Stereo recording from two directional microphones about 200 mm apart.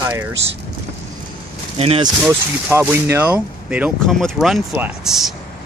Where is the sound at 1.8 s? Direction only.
30° right (ahead or behind).